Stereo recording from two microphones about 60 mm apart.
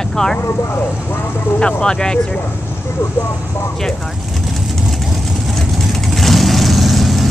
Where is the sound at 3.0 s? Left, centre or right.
Left.